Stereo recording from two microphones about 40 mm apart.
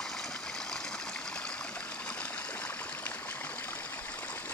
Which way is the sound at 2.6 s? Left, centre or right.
Left.